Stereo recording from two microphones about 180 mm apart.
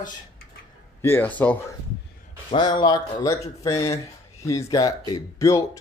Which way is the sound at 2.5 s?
25° left (ahead or behind).